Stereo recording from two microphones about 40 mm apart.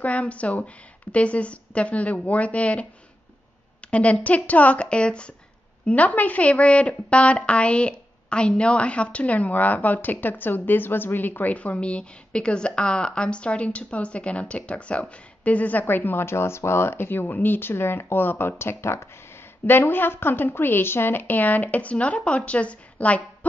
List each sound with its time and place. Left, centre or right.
0.0 s a woman's voice: left
3.9 s a woman's voice: left
4.8 s speech: left
5.9 s a woman's voice: left
11.5 s a woman's voice: left
19.6 s a woman's voice: left